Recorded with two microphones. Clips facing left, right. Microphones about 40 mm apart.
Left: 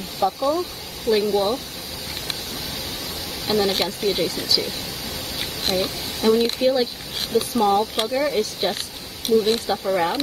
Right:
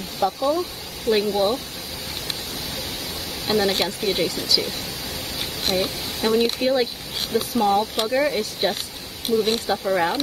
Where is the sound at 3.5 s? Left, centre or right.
Centre.